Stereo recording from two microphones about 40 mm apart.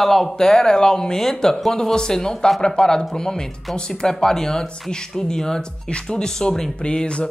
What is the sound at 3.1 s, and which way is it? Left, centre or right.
Speech, centre.